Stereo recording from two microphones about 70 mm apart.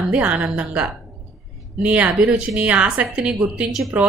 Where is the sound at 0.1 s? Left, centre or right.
Centre.